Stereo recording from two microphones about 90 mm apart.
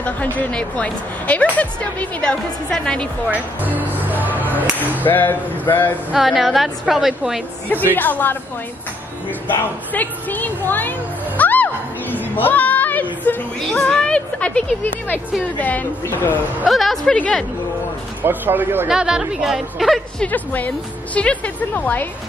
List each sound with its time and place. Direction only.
0.0 s a woman's voice: 15° left (ahead or behind)
3.3 s music: 20° right (ahead or behind)
5.0 s speech: 20° left (ahead or behind)
6.1 s a woman's voice: centre (ahead or behind)
7.7 s speech: 20° left (ahead or behind)
9.9 s a sound: 20° left (ahead or behind)
13.7 s a woman's voice: 10° left (ahead or behind)
15.6 s speech: 20° left (ahead or behind)
16.6 s a woman's voice: centre (ahead or behind)
18.2 s speech: 20° right (ahead or behind)
18.9 s a woman's voice: 10° right (ahead or behind)
20.2 s a woman's voice: 20° left (ahead or behind)